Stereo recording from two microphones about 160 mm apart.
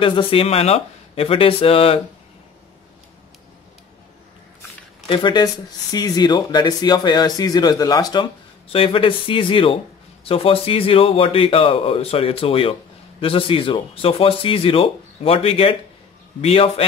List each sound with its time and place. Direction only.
0.0 s speech: 35° left (ahead or behind)
5.0 s speech: 30° left (ahead or behind)